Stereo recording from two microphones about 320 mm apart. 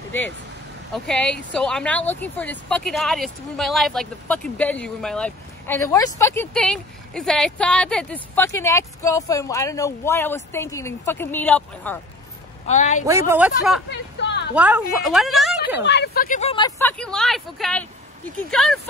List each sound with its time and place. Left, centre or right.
0.9 s speech: centre
12.6 s speech: left
13.0 s speech: centre
15.8 s speech: left; by 18.8 s centre